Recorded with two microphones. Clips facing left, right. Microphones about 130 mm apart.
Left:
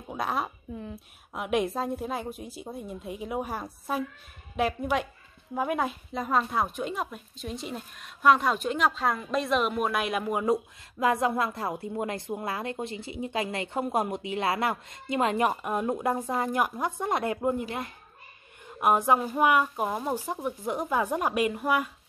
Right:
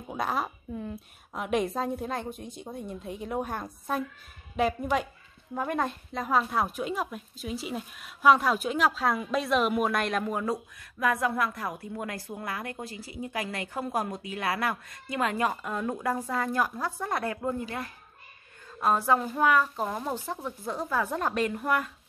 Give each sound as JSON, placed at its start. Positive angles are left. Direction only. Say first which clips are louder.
{"t": 0.1, "sound": "a woman's voice", "louder": "even", "side_deg": 0}
{"t": 10.4, "sound": "a woman's voice", "louder": "left 5 dB", "side_deg": 25}